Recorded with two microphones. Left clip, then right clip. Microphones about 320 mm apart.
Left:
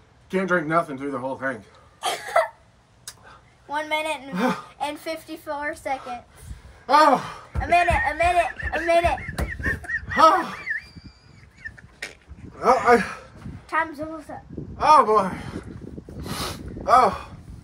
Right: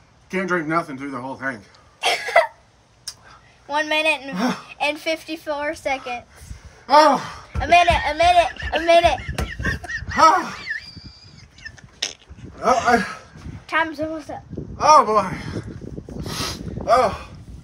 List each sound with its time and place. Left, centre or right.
0.3 s a man's voice: centre
2.0 s cough: right
3.6 s a woman's voice: right
6.9 s a man's voice: centre
7.6 s a man's voice: right
9.5 s fowl: centre
11.6 s a sound: centre
12.6 s speech: centre
13.7 s a woman's voice: right
14.8 s a man's voice: centre
16.3 s a sound: centre